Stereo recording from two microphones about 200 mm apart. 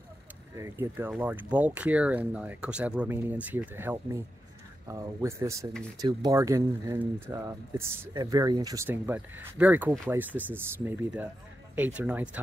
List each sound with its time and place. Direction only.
0.6 s speech: 10° right (ahead or behind)
11.7 s speech: 10° right (ahead or behind)